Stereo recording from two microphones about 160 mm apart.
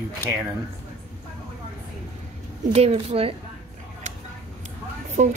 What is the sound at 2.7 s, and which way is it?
Speech, 40° right (ahead or behind).